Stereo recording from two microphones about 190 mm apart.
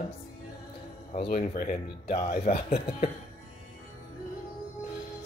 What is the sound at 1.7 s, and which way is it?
A woman's voice, 35° left (ahead or behind).